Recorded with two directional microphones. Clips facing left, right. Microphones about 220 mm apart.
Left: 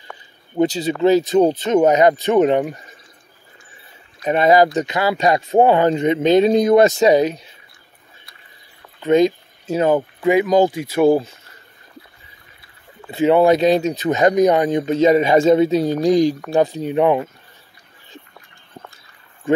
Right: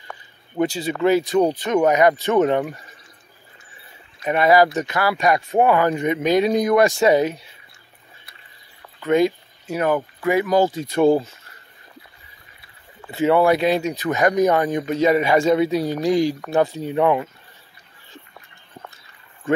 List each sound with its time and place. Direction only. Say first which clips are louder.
0.6 s speech: left 4 dB; 20° left (ahead or behind)
4.2 s speech: left 2 dB; 25° left (ahead or behind)
9.0 s speech: left 3 dB; 20° left (ahead or behind)
13.1 s speech: left 3 dB; 20° left (ahead or behind)